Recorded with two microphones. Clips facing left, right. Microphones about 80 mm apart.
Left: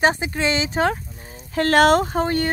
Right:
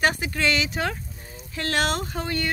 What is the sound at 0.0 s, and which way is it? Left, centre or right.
Speech, left.